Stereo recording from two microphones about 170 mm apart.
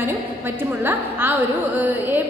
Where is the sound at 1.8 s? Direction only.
10° right (ahead or behind).